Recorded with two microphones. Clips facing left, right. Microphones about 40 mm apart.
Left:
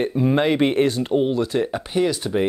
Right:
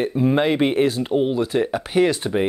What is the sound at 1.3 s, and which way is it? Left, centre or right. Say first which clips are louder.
Speech: right 1 dB; centre.